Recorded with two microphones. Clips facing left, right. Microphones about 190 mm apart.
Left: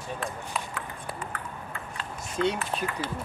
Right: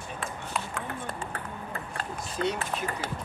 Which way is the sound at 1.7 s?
40° right (ahead or behind).